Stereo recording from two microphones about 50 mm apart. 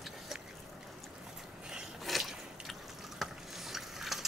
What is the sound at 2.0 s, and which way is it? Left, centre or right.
Drip, centre.